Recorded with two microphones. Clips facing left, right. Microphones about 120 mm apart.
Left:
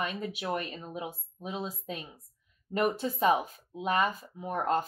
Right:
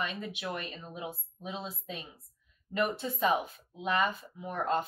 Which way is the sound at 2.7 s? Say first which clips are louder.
Left 3 dB; 40° left (ahead or behind).